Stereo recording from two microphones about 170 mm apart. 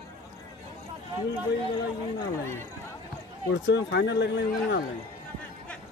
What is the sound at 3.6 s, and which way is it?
Speech, 90° left.